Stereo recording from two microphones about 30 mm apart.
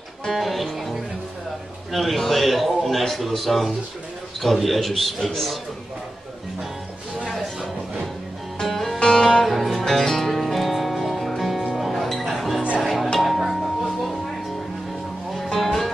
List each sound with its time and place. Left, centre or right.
0.3 s a man's voice: centre
2.1 s a man's voice: centre
2.4 s a man's voice: centre
9.0 s music: left
9.4 s music: centre
15.3 s music: centre